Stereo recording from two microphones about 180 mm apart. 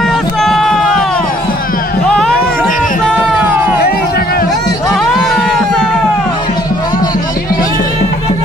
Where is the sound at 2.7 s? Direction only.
45° left (ahead or behind).